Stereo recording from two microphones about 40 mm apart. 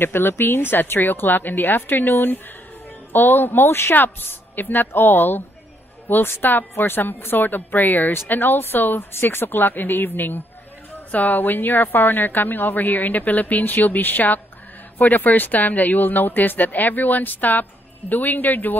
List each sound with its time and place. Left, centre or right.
0.0 s speech: left
3.9 s a woman's voice: left
8.3 s a woman's voice: left